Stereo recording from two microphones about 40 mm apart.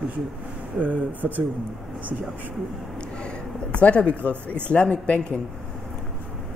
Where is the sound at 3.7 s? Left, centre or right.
Left.